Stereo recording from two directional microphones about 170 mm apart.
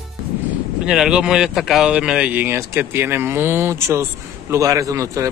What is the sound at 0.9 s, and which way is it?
Speech, 5° right (ahead or behind).